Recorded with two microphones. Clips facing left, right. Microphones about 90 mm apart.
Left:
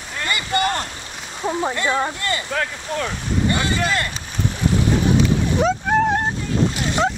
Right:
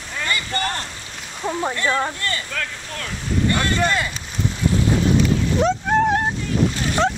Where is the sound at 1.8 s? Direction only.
15° left (ahead or behind).